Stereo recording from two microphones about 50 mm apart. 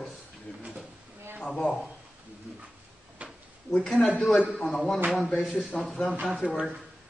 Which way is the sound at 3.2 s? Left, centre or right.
Right.